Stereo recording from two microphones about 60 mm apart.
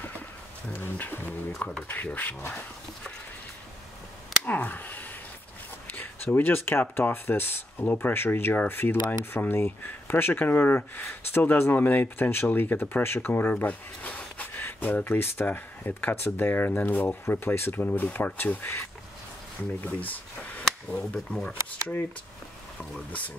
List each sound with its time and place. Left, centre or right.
0.7 s speech: left
4.5 s speech: left
13.0 s a sound: left
15.0 s speech: left
17.8 s speech: left